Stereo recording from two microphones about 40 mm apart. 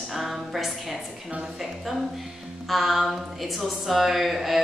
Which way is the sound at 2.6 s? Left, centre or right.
Centre.